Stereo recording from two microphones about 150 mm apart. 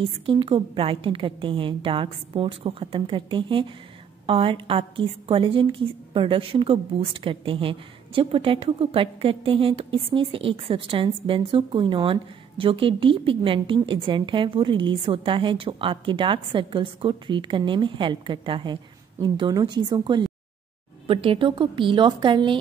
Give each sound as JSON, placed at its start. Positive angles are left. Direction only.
{"t": 0.0, "sound": "a woman's voice", "side_deg": -35}